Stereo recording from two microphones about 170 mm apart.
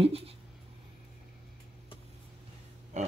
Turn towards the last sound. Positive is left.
turn(degrees=-40)  # may be behind; listen again after turning